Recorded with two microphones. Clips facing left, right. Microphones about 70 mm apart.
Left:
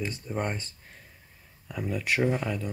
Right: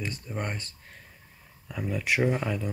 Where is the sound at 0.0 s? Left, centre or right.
Centre.